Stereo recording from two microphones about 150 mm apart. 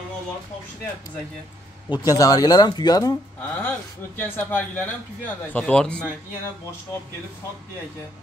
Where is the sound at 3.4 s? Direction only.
10° left (ahead or behind).